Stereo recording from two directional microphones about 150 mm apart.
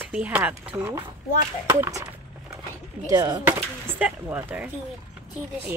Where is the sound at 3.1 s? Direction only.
25° right (ahead or behind).